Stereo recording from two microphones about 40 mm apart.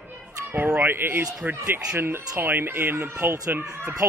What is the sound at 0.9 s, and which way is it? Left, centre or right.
Speech, right.